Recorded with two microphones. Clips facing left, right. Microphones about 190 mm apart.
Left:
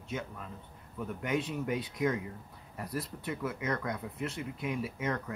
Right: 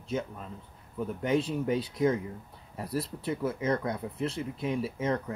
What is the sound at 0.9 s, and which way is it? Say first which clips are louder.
Speech: right 5 dB; 30° right (ahead or behind).